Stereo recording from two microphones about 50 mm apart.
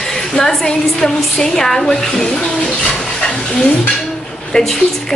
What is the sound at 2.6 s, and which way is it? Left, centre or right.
Dog, centre.